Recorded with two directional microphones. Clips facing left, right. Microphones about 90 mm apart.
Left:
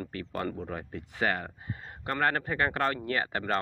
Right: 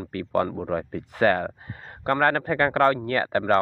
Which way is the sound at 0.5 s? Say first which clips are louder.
Right 9 dB; 60° right (ahead or behind).